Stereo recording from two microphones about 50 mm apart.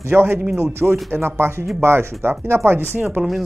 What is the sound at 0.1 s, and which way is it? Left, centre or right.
Speech, right.